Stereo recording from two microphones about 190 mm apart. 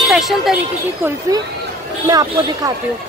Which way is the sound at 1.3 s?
20° right (ahead or behind).